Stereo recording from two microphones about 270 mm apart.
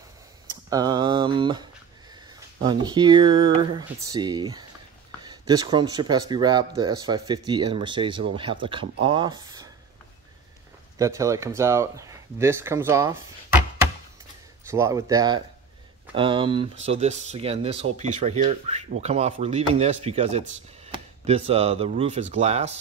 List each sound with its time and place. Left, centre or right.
0.7 s speech: centre
2.6 s speech: centre
11.0 s speech: centre
14.7 s speech: centre
16.7 s speech: right
17.0 s speech: right